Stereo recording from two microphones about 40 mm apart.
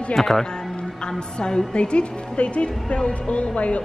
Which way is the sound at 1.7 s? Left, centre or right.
Left.